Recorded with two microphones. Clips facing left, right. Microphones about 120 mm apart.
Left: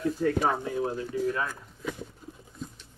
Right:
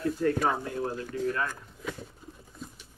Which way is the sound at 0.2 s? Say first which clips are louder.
Left 1 dB; 5° left (ahead or behind).